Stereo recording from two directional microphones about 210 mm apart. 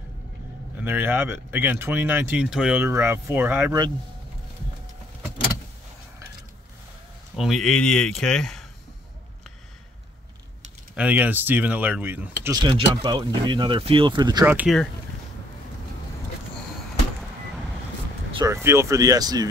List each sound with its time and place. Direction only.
0.7 s speech: 10° right (ahead or behind)
7.3 s speech: centre (ahead or behind)
11.0 s speech: 5° right (ahead or behind)
12.4 s speech: 20° right (ahead or behind)
14.4 s speech: 10° right (ahead or behind)
18.3 s speech: 15° right (ahead or behind)